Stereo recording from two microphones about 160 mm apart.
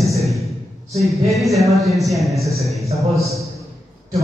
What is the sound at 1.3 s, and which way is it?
A man's voice, centre (ahead or behind).